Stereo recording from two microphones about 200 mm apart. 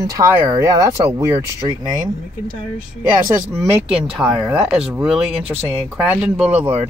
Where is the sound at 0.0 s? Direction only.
15° right (ahead or behind).